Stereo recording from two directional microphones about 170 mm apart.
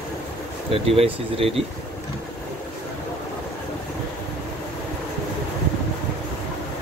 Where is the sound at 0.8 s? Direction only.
35° right (ahead or behind).